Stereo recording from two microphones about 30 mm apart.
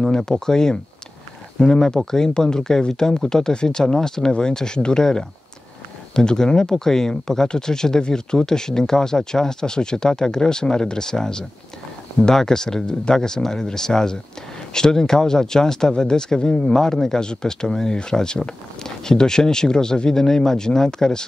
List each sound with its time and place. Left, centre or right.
0.3 s speech: centre
1.6 s speech: left
6.1 s speech: left
16.7 s speech: centre